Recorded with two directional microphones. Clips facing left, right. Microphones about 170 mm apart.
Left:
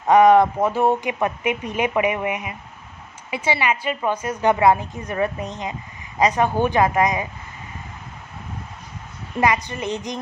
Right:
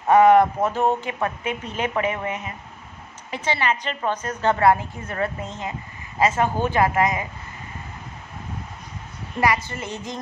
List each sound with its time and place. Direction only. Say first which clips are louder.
0.1 s a woman's voice: left 1 dB; 15° left (ahead or behind)
9.4 s a woman's voice: left 2 dB; 20° left (ahead or behind)